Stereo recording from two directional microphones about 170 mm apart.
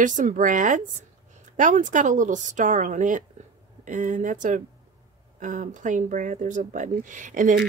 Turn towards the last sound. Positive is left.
turn(degrees=-50)  # may be behind; listen again after turning